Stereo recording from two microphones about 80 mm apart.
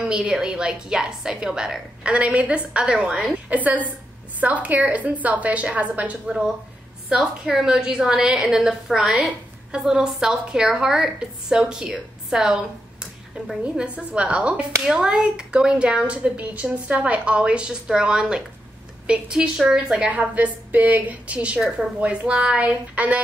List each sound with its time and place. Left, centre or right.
0.0 s a woman's voice: centre
7.1 s a woman's voice: centre